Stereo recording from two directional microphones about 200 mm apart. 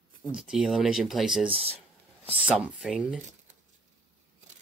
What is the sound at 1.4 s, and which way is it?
Speech, 30° right (ahead or behind).